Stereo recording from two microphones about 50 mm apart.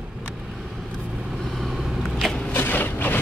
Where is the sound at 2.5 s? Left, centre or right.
Left.